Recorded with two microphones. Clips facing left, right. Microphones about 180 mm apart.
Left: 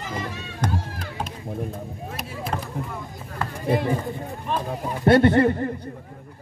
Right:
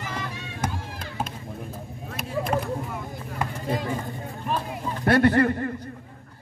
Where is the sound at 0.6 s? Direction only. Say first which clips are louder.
Left 4 dB; 10° right (ahead or behind).